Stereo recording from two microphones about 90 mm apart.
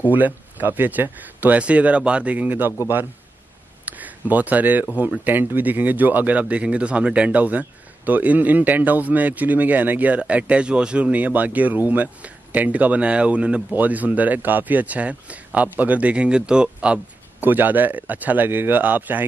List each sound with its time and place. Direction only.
0.0 s speech: 20° right (ahead or behind)
3.8 s a sound: 20° right (ahead or behind)
5.2 s speech: 20° right (ahead or behind)